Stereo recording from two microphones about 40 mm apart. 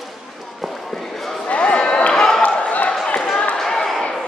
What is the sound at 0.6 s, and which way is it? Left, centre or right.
Basketball bounce, centre.